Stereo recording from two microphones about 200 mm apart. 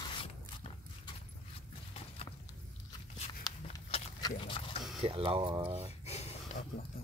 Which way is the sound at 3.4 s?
20° left (ahead or behind).